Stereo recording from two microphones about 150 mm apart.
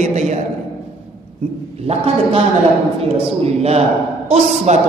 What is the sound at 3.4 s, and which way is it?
A man's voice, 45° right (ahead or behind).